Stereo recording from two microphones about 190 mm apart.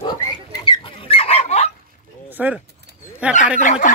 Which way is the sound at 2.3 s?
10° right (ahead or behind).